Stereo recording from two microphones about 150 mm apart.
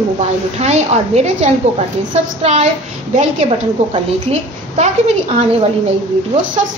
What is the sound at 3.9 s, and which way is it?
A woman's voice, 45° right (ahead or behind).